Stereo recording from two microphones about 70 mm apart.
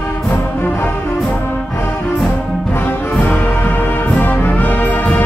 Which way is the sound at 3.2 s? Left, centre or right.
Left.